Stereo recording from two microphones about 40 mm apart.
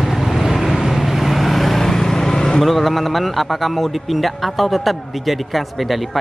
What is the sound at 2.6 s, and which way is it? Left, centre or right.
A man's voice, centre.